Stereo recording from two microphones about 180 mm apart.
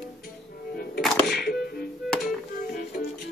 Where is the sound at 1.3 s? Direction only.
60° left (ahead or behind).